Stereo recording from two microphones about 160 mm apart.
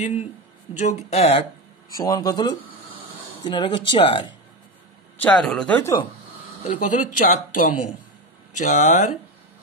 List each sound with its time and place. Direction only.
0.7 s speech: 45° left (ahead or behind)
2.0 s speech: 25° left (ahead or behind)
5.2 s speech: 5° left (ahead or behind)
6.6 s speech: 55° left (ahead or behind)